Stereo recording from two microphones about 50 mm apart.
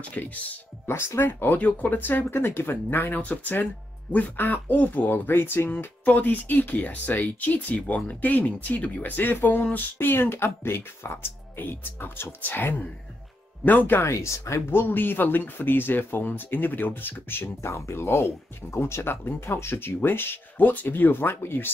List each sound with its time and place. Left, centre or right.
0.0 s speech: left
0.8 s speech: left
1.6 s speech: left
6.0 s speech: left
14.0 s speech: left
14.7 s speech: left
17.6 s speech: left